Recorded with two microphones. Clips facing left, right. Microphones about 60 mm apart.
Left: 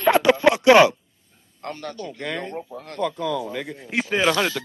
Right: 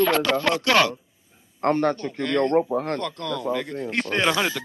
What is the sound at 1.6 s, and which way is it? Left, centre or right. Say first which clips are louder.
Speech: right 11 dB; right.